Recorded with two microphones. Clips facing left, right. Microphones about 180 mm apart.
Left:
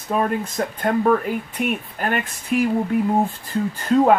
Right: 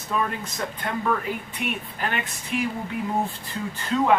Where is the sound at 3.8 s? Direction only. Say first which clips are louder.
Left 7 dB; 45° left (ahead or behind).